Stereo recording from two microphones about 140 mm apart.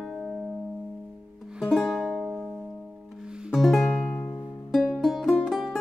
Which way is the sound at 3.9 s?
10° left (ahead or behind).